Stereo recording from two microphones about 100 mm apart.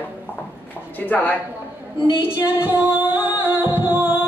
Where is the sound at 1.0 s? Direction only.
20° left (ahead or behind).